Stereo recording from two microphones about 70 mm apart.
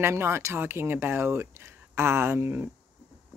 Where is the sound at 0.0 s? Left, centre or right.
Right.